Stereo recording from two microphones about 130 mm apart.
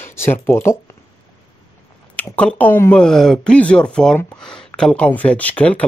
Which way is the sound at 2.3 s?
10° left (ahead or behind).